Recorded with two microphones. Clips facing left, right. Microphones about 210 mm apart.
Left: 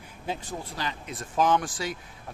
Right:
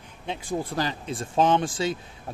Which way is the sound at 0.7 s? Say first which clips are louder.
Right 6 dB; 35° right (ahead or behind).